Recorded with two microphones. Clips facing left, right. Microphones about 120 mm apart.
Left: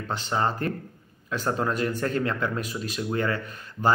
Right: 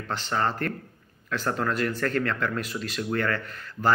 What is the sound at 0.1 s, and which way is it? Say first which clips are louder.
Speech: left 1 dB; 15° left (ahead or behind).